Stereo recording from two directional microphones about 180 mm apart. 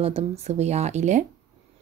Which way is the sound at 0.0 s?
35° right (ahead or behind).